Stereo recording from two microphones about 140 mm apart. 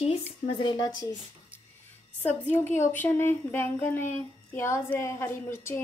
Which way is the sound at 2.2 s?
10° left (ahead or behind).